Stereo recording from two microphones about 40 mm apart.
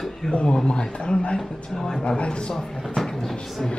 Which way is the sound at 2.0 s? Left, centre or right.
Left.